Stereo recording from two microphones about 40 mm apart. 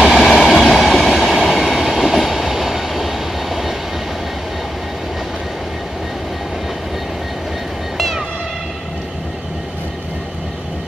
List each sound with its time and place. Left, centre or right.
0.0 s train: centre